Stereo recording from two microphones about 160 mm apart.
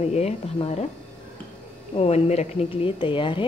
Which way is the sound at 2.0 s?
40° left (ahead or behind).